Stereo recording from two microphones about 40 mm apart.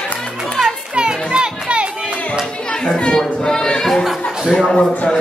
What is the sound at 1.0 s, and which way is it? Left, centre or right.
Children playing, right.